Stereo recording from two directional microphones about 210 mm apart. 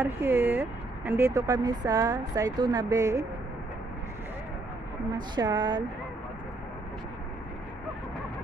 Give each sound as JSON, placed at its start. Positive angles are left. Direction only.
{"t": 0.0, "sound": "speech", "side_deg": -10}
{"t": 5.1, "sound": "speech", "side_deg": -20}